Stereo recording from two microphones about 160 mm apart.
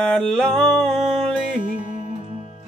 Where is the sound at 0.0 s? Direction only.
5° left (ahead or behind).